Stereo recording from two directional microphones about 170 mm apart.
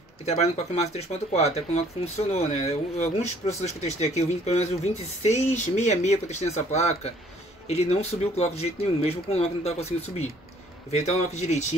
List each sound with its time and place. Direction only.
0.2 s speech: 40° left (ahead or behind)